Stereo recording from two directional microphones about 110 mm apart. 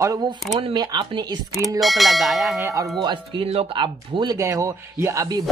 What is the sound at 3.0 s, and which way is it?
Speech, 50° right (ahead or behind).